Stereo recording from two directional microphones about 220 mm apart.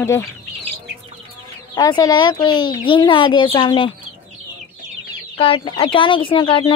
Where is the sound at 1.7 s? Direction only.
15° left (ahead or behind).